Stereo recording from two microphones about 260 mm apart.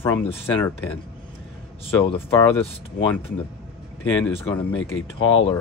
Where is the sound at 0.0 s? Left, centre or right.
Centre.